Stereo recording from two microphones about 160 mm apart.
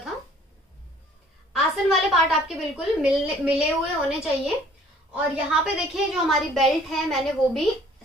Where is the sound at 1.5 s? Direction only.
Centre (ahead or behind).